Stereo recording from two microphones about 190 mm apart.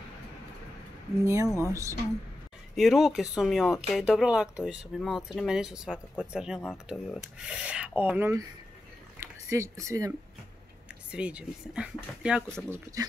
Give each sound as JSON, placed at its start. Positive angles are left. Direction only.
{"t": 1.2, "sound": "speech", "side_deg": -15}
{"t": 2.7, "sound": "speech", "side_deg": 0}
{"t": 11.1, "sound": "speech", "side_deg": -5}